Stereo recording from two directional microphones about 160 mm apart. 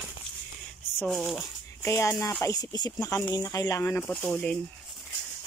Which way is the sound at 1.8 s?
20° left (ahead or behind).